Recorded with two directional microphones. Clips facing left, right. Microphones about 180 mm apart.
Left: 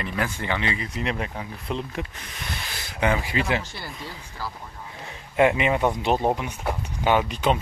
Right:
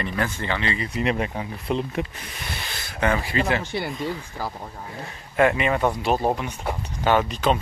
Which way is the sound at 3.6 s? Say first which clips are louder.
Right 10 dB; 60° right (ahead or behind).